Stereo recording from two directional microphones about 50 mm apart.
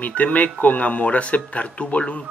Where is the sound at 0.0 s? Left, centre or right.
Left.